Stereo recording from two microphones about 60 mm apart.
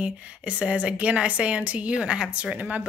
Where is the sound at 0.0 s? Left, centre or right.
Centre.